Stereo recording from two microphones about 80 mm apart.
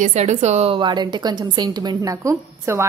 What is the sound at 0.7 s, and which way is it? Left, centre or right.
Speech, right.